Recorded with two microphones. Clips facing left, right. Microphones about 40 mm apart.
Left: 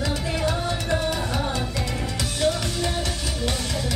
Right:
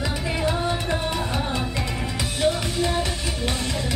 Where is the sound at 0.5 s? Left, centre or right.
Centre.